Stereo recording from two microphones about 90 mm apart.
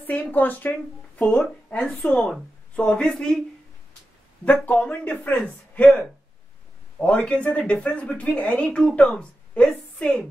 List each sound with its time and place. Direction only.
0.0 s speech: 20° left (ahead or behind)
4.6 s speech: 15° left (ahead or behind)
5.9 s speech: 5° left (ahead or behind)